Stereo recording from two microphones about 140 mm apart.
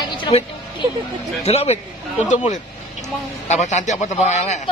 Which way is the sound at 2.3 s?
60° left (ahead or behind).